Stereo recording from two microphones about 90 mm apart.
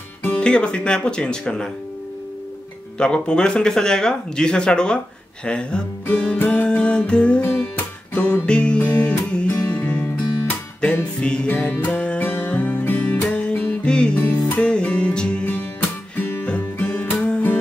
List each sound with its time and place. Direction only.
0.2 s speech: 15° left (ahead or behind)
3.0 s speech: 10° left (ahead or behind)
6.0 s music: 20° left (ahead or behind)
11.1 s music: 10° left (ahead or behind)
13.2 s music: 10° left (ahead or behind)
16.2 s music: 25° left (ahead or behind)